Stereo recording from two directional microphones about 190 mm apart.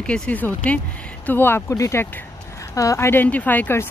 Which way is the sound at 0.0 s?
5° left (ahead or behind).